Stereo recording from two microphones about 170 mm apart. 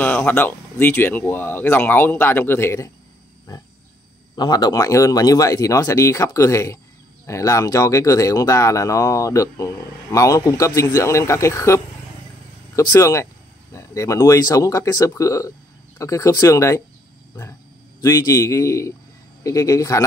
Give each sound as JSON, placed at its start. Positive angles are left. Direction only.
{"t": 0.0, "sound": "speech", "side_deg": 10}
{"t": 4.4, "sound": "speech", "side_deg": 25}
{"t": 18.0, "sound": "speech", "side_deg": 20}